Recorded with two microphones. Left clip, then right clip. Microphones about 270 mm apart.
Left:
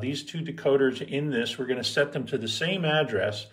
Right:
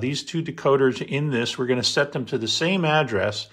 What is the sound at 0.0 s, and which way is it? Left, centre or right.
Speech, right.